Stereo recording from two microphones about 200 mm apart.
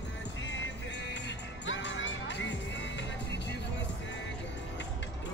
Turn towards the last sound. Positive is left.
turn(degrees=65)  # may be behind; listen again after turning